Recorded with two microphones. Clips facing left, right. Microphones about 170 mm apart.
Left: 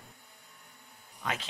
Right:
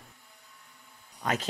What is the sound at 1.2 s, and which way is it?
Speech, 45° right (ahead or behind).